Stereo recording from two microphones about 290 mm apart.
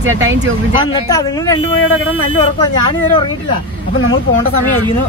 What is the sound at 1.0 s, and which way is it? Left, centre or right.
Speech, centre.